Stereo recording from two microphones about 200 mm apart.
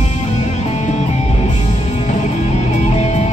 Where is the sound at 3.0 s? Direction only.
35° left (ahead or behind).